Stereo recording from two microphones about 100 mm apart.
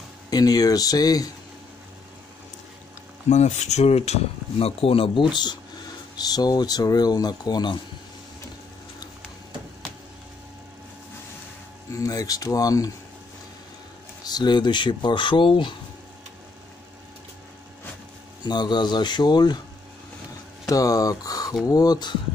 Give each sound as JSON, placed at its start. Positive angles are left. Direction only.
{"t": 0.3, "sound": "speech", "side_deg": 40}
{"t": 3.3, "sound": "speech", "side_deg": 90}
{"t": 5.3, "sound": "speech", "side_deg": 45}
{"t": 12.0, "sound": "speech", "side_deg": 35}
{"t": 14.2, "sound": "speech", "side_deg": 45}
{"t": 18.4, "sound": "speech", "side_deg": 45}
{"t": 20.6, "sound": "speech", "side_deg": 35}